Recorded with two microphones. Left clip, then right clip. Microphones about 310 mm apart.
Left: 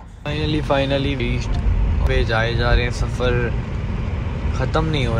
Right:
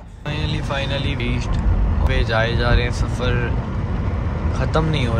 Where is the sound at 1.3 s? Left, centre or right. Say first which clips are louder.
Right 1 dB; centre.